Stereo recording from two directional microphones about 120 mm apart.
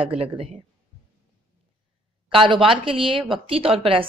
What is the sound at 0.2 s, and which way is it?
Speech, 55° right (ahead or behind).